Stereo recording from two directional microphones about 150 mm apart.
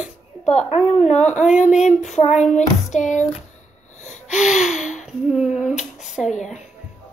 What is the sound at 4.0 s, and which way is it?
Gasp, 50° left (ahead or behind).